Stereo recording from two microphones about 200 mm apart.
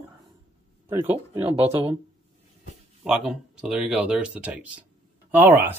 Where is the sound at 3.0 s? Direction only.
Centre (ahead or behind).